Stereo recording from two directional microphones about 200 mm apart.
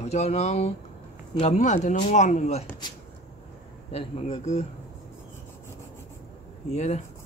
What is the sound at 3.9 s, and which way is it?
Speech, 30° left (ahead or behind).